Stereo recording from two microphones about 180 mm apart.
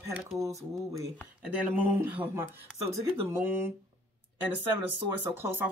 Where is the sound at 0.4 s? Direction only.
15° right (ahead or behind).